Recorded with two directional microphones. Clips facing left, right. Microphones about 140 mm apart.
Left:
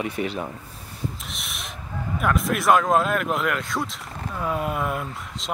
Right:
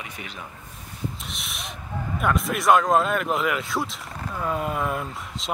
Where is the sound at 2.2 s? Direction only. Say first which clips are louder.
Left 1 dB; centre (ahead or behind).